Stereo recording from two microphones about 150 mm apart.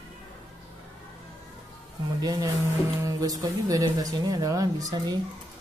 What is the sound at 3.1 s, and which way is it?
A woman's voice, 25° right (ahead or behind).